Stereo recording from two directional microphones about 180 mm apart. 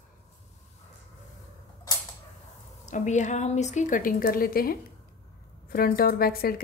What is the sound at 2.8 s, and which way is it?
A woman's voice, 45° left (ahead or behind).